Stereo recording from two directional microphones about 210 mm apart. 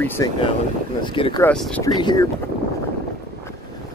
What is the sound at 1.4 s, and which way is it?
Speech, 5° left (ahead or behind).